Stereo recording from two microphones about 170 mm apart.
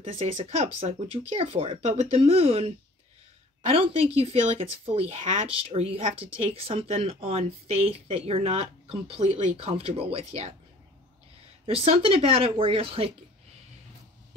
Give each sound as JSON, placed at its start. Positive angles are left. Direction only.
{"t": 0.2, "sound": "speech", "side_deg": -35}
{"t": 11.6, "sound": "speech", "side_deg": -35}